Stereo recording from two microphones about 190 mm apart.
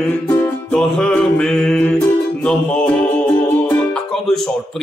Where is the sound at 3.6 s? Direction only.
5° left (ahead or behind).